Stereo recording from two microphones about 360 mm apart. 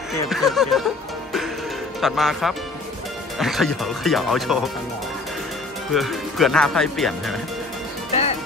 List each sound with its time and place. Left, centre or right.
0.3 s speech: centre
2.0 s speech: centre
5.9 s speech: centre
8.1 s music: centre